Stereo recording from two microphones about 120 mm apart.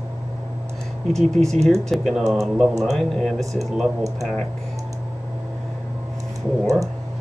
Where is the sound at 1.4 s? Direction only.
65° right (ahead or behind).